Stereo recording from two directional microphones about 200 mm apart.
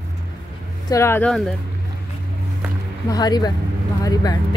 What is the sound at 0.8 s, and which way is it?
Speech, 15° left (ahead or behind).